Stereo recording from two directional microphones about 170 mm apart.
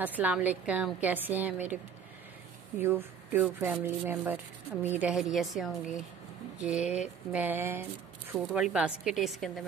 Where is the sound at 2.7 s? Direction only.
15° right (ahead or behind).